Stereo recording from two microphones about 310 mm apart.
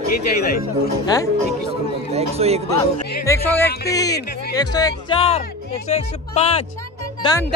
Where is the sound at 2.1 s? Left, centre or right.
Centre.